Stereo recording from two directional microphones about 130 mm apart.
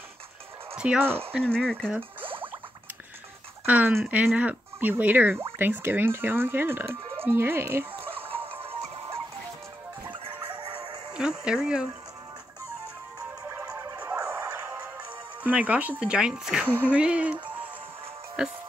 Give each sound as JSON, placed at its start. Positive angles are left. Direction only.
{"t": 0.8, "sound": "speech", "side_deg": -10}
{"t": 1.4, "sound": "speech", "side_deg": 5}
{"t": 2.2, "sound": "a sound", "side_deg": -40}
{"t": 3.6, "sound": "speech", "side_deg": -15}
{"t": 8.3, "sound": "music", "side_deg": -45}
{"t": 10.2, "sound": "chicken", "side_deg": -40}
{"t": 11.1, "sound": "speech", "side_deg": -5}
{"t": 13.9, "sound": "music", "side_deg": -10}
{"t": 15.4, "sound": "speech", "side_deg": -10}